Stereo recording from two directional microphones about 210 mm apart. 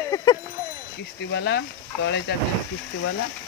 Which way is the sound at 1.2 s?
55° left (ahead or behind).